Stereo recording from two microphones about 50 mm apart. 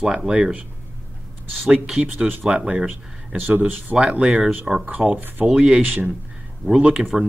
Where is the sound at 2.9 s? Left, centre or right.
Right.